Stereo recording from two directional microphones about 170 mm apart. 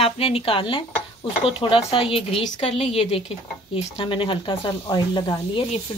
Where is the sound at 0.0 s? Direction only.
35° left (ahead or behind).